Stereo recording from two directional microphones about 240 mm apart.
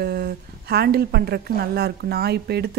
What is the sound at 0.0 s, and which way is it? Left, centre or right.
A woman's voice, right.